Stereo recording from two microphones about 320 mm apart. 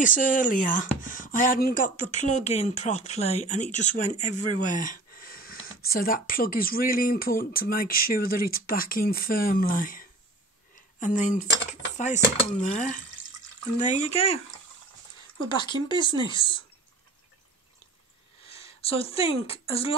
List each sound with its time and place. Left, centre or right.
0.0 s speech: left
15.4 s speech: centre
18.5 s speech: centre